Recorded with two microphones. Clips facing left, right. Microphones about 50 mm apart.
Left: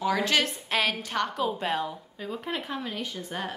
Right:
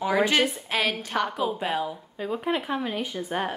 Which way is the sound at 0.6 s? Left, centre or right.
Centre.